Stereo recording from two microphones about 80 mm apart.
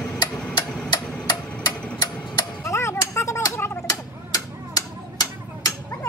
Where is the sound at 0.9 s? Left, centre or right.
Left.